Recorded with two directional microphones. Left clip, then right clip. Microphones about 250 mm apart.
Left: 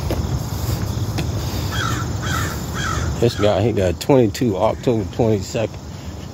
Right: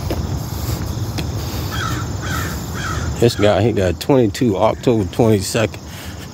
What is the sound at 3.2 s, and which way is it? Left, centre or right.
Speech, right.